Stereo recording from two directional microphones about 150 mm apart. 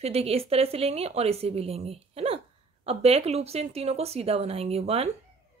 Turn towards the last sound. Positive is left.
turn(degrees=-45)  # may be behind; listen again after turning